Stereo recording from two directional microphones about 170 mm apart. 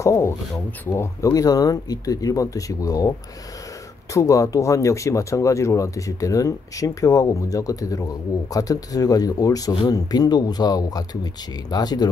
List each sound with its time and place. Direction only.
0.0 s speech: 15° left (ahead or behind)